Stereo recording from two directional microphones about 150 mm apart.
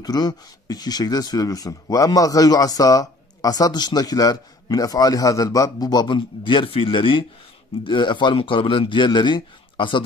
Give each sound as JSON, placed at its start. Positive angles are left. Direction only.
{"t": 0.0, "sound": "a man's voice", "side_deg": 25}